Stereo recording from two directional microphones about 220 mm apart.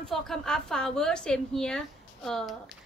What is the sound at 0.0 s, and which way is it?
A woman's voice, centre (ahead or behind).